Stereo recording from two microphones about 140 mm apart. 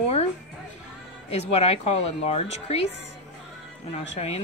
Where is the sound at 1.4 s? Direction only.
50° left (ahead or behind).